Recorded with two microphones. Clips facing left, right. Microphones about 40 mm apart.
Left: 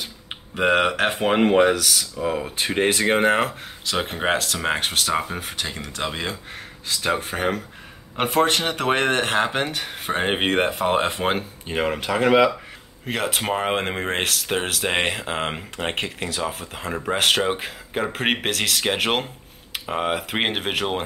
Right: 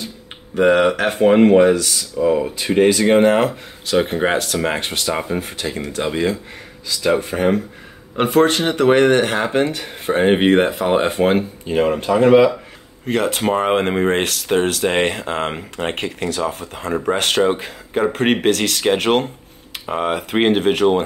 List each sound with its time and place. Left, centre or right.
0.7 s speech: centre
12.1 s speech: left
13.0 s speech: centre